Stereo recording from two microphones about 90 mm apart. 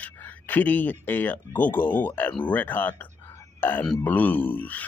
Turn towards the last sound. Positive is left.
turn(degrees=20)  # may be behind; listen again after turning